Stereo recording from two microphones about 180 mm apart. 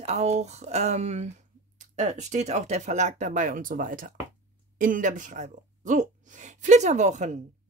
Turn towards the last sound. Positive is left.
turn(degrees=-40)  # may be behind; listen again after turning